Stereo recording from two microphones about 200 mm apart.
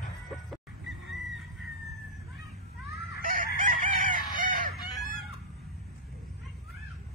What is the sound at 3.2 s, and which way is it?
Chicken, 45° right (ahead or behind).